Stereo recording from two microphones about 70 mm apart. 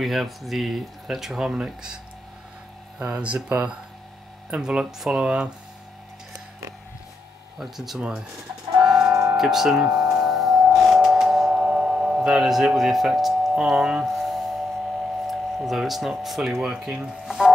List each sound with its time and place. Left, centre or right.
0.0 s speech: centre
3.1 s speech: centre
7.5 s speech: centre
8.8 s music: centre
9.4 s speech: centre
9.9 s music: centre
10.8 s a sound: centre